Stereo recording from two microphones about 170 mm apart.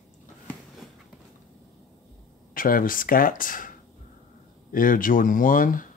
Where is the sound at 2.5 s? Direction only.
55° left (ahead or behind).